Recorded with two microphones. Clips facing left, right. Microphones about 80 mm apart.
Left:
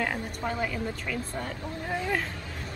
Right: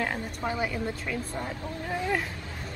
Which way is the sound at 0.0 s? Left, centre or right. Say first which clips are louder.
Even; centre.